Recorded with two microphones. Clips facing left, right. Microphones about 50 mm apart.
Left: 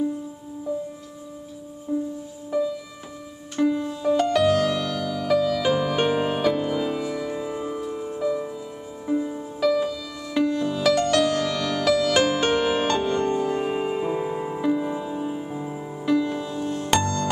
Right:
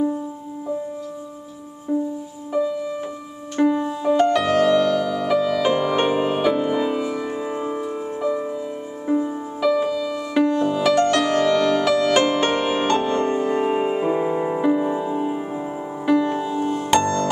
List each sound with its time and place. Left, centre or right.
1.9 s music: right
3.5 s music: right
3.8 s music: centre
16.4 s music: centre
17.0 s music: right